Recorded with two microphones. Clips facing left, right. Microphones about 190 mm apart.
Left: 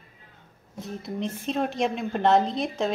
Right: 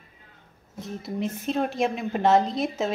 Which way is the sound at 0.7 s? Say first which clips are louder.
Right 1 dB; 5° right (ahead or behind).